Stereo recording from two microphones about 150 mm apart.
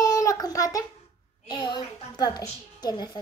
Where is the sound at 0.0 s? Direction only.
20° left (ahead or behind).